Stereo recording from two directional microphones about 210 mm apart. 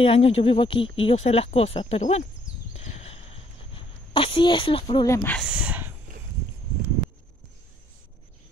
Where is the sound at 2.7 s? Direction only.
30° left (ahead or behind).